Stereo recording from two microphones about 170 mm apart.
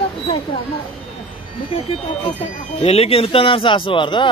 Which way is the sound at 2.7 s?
35° left (ahead or behind).